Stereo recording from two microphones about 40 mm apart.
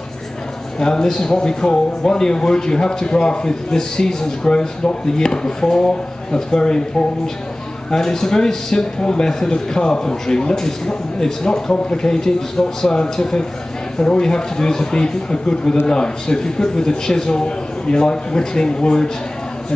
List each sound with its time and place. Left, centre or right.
0.7 s speech: centre
7.9 s speech: centre